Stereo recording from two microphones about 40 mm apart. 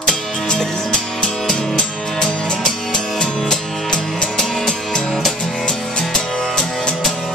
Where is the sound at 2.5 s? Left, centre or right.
Centre.